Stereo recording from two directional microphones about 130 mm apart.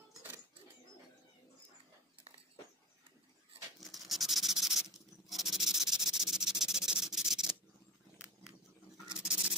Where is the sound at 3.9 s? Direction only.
Centre (ahead or behind).